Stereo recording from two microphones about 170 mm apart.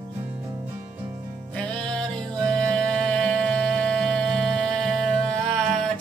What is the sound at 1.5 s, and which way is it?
Music, 5° left (ahead or behind).